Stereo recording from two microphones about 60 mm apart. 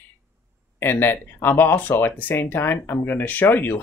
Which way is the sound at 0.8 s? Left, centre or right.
Left.